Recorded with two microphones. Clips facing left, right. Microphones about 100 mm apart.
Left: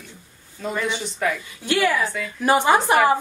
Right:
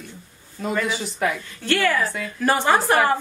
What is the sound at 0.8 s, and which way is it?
Speech, 5° right (ahead or behind).